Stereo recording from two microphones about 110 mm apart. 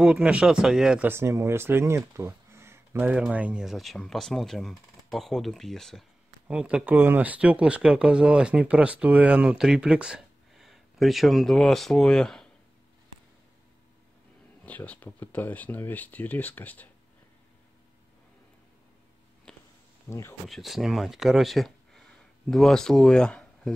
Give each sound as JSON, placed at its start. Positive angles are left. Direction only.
{"t": 0.0, "sound": "speech", "side_deg": -10}
{"t": 1.0, "sound": "speech", "side_deg": -20}
{"t": 6.4, "sound": "speech", "side_deg": -10}
{"t": 14.6, "sound": "speech", "side_deg": 15}
{"t": 19.5, "sound": "a sound", "side_deg": 10}
{"t": 20.1, "sound": "speech", "side_deg": 25}
{"t": 20.4, "sound": "speech", "side_deg": 0}